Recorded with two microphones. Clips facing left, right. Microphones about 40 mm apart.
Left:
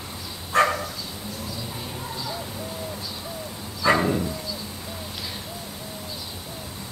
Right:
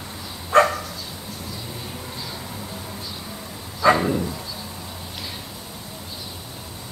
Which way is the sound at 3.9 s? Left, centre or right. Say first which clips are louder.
Even; centre.